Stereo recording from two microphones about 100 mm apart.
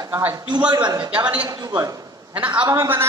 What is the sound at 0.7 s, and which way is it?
A man's voice, 45° right (ahead or behind).